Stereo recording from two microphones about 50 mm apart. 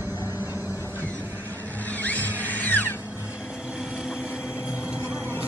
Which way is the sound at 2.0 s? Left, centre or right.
Left.